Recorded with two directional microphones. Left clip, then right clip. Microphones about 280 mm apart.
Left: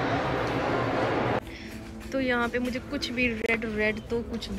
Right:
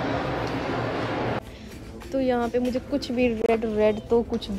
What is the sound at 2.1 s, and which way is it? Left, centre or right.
Speech, centre.